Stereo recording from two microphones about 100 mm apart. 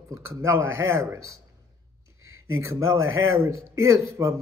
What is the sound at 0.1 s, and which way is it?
Speech, 30° right (ahead or behind).